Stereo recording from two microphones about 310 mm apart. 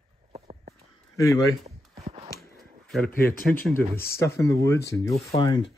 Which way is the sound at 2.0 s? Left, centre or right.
Centre.